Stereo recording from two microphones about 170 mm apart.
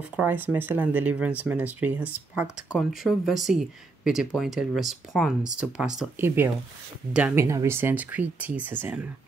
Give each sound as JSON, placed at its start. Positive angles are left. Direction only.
{"t": 0.1, "sound": "speech", "side_deg": -10}